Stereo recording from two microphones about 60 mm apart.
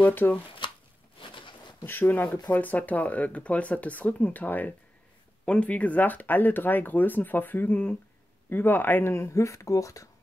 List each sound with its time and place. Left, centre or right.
0.0 s speech: left
1.9 s speech: left
5.4 s speech: centre; by 9.1 s left
9.1 s speech: left